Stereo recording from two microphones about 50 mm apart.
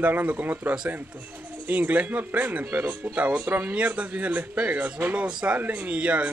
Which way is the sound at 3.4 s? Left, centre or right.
Right.